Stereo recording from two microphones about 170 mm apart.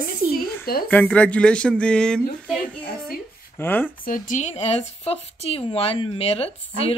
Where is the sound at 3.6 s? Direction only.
10° left (ahead or behind).